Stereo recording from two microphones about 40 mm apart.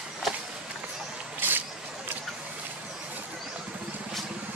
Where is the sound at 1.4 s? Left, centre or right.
Right.